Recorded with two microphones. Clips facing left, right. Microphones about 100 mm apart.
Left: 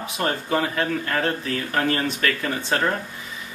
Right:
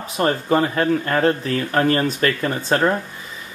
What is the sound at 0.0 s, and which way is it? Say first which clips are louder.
Speech: right 5 dB; 35° right (ahead or behind).